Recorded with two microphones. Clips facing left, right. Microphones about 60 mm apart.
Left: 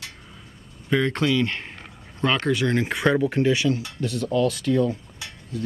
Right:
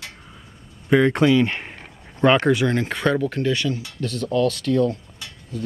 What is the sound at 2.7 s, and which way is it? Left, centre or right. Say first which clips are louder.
Speech: even; centre.